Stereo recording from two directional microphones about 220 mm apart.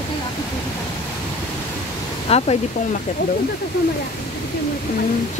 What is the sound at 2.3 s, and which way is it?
Speech, 30° left (ahead or behind).